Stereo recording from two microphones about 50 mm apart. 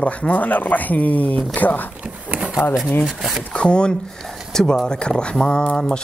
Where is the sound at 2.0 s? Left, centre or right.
Right.